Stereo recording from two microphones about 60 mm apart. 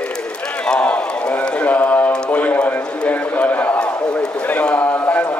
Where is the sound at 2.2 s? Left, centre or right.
Left.